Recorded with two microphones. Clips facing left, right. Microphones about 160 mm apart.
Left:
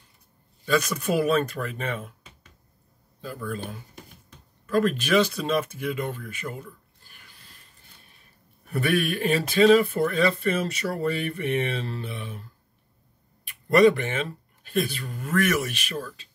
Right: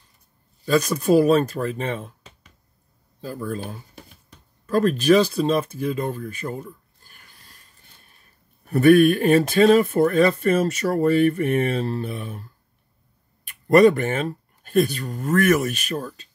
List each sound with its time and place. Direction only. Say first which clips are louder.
0.7 s speech: right 6 dB; 35° right (ahead or behind)
8.6 s speech: right 11 dB; 45° right (ahead or behind)
13.5 s speech: right 4 dB; 50° right (ahead or behind)